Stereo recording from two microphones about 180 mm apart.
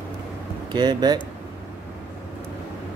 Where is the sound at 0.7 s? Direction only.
25° right (ahead or behind).